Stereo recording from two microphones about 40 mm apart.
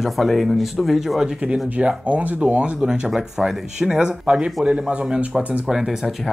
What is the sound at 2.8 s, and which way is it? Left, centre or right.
Speech, centre.